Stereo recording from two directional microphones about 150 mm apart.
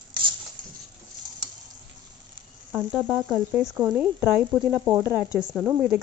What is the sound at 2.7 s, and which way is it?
Cricket, centre (ahead or behind).